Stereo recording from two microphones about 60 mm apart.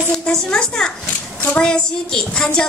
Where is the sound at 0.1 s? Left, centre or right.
Centre.